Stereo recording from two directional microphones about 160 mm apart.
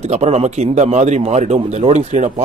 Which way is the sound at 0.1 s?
45° right (ahead or behind).